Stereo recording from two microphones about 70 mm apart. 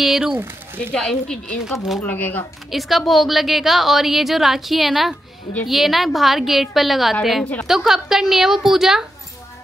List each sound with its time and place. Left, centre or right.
0.0 s speech: centre
0.9 s speech: centre
2.0 s speech: left
2.7 s a woman's voice: centre